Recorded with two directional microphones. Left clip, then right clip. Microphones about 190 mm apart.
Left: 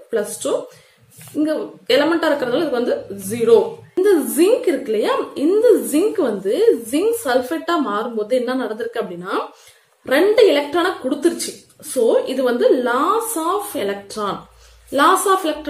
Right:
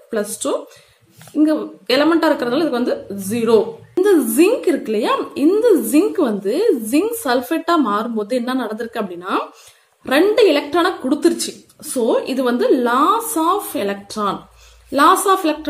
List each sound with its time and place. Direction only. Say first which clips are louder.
1.3 s a woman's voice: right 4 dB; 40° right (ahead or behind)